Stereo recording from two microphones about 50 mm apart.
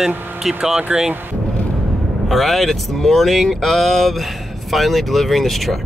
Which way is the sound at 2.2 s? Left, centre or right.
Centre.